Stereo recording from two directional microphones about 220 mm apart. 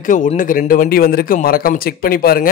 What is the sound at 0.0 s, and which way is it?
A man's voice, 35° left (ahead or behind).